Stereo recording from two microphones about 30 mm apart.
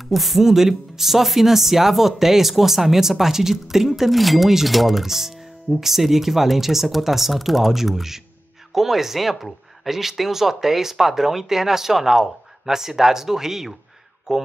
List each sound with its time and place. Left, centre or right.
0.0 s speech: centre
4.1 s speech: centre
5.0 s speech: centre